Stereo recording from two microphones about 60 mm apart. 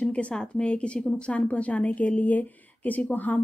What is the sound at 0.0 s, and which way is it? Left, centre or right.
A woman's voice, centre.